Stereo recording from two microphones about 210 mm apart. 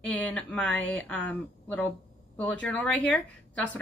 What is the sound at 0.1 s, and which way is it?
Speech, 5° left (ahead or behind).